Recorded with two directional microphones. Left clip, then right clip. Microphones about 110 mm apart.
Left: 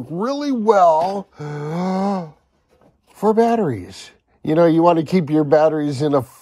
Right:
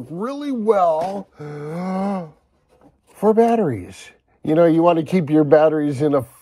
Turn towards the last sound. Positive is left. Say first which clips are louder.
# right 1 dB
turn(degrees=10)  # may be behind; listen again after turning